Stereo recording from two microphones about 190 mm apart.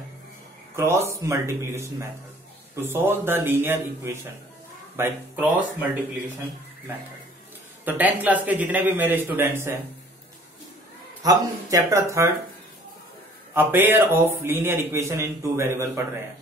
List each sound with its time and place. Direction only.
0.7 s a man's voice: 15° right (ahead or behind)
7.8 s a man's voice: 10° right (ahead or behind)
11.2 s a man's voice: 20° right (ahead or behind)
13.6 s a man's voice: 10° right (ahead or behind)